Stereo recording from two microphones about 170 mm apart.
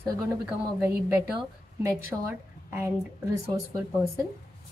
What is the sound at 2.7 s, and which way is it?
Speech, 15° right (ahead or behind).